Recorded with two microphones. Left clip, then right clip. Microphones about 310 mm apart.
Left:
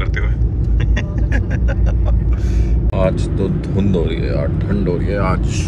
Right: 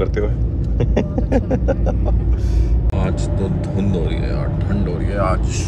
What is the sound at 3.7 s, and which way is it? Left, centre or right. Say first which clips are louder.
Speech: left 4 dB; centre.